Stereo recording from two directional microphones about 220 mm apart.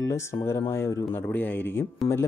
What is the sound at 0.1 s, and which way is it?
Speech, 15° left (ahead or behind).